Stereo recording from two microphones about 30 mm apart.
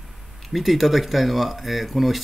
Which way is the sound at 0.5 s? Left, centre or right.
Centre.